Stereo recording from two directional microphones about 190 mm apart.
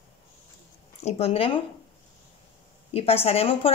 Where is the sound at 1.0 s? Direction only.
30° left (ahead or behind).